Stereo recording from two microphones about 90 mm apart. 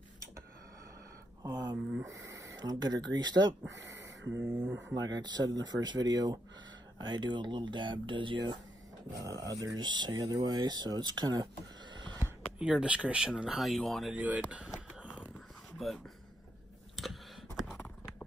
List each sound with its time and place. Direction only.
1.4 s speech: 45° right (ahead or behind)
3.8 s speech: 30° right (ahead or behind)
4.9 s speech: 50° right (ahead or behind)
9.2 s speech: 40° right (ahead or behind)
9.8 s speech: 55° right (ahead or behind)
10.1 s speech: 40° right (ahead or behind); by 12.2 s 60° right (ahead or behind)
12.5 s speech: 10° right (ahead or behind)
13.6 s speech: centre (ahead or behind)
14.1 s speech: 15° right (ahead or behind)
15.8 s speech: centre (ahead or behind)
16.9 s a sound: centre (ahead or behind)